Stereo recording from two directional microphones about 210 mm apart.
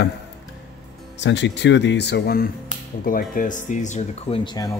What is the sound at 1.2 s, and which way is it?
Speech, 55° left (ahead or behind).